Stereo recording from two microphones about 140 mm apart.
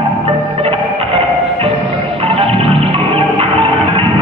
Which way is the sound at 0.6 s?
45° right (ahead or behind).